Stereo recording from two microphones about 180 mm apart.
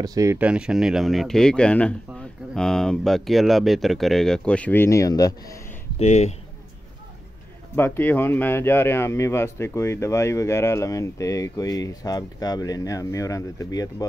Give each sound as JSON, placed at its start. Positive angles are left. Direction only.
{"t": 0.0, "sound": "speech", "side_deg": -20}
{"t": 5.9, "sound": "speech", "side_deg": 40}
{"t": 7.7, "sound": "speech", "side_deg": 10}